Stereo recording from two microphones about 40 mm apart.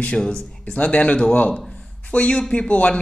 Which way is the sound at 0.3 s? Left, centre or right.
Left.